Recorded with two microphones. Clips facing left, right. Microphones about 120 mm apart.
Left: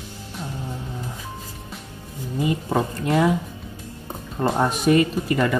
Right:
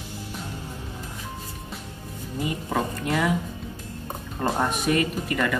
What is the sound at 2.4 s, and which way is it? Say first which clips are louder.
Speech: left 4 dB; 30° left (ahead or behind).